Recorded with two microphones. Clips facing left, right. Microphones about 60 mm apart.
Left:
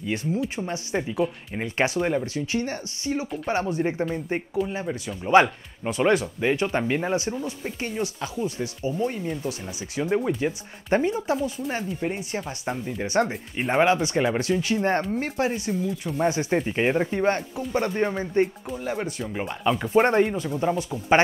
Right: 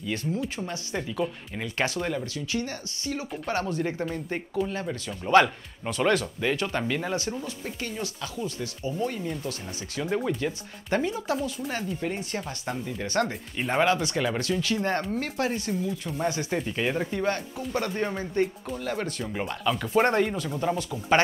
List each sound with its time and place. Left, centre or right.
0.0 s speech: left
15.7 s speech: centre
16.2 s speech: left
18.8 s speech: centre